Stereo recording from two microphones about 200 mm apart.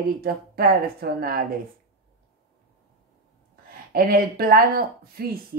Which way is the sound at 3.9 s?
50° right (ahead or behind).